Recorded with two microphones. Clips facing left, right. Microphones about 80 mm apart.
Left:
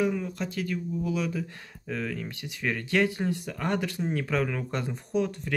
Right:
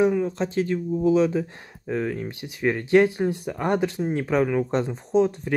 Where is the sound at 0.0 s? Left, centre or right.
Right.